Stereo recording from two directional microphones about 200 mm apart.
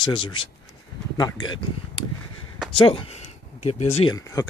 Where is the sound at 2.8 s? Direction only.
25° left (ahead or behind).